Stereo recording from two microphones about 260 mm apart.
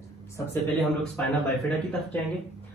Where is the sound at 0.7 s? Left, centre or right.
Centre.